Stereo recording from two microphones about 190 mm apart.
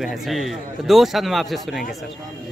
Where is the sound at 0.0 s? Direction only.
Centre (ahead or behind).